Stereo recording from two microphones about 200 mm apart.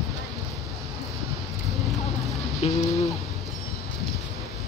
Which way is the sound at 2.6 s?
30° left (ahead or behind).